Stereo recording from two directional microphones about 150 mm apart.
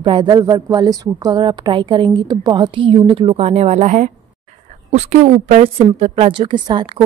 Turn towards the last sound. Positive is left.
turn(degrees=-30)  # may be behind; listen again after turning